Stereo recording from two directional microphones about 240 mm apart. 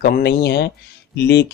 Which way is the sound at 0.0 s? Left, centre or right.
Left.